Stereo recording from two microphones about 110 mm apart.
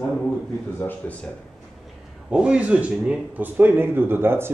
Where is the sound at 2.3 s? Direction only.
10° right (ahead or behind).